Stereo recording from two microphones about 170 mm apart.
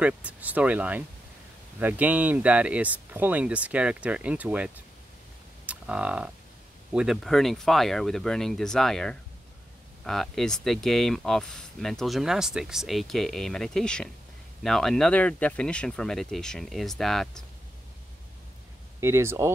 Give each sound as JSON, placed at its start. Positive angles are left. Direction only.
{"t": 0.0, "sound": "speech", "side_deg": -10}
{"t": 18.9, "sound": "speech", "side_deg": -15}